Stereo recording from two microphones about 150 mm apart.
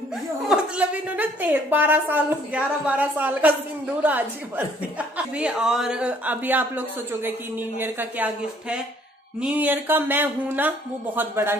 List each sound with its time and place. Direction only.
0.5 s a woman's voice: 10° right (ahead or behind)